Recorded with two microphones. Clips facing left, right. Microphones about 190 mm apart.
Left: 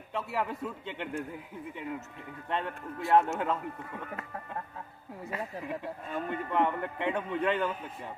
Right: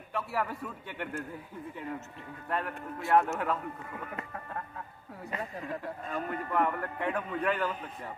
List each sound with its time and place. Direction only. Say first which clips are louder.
0.1 s a man's voice: even; 20° left (ahead or behind)
2.5 s a man's voice: even; 25° left (ahead or behind)
3.0 s speech: left 1 dB; centre (ahead or behind)
5.3 s speech: even; 10° left (ahead or behind)
6.1 s a man's voice: left 1 dB; 25° left (ahead or behind)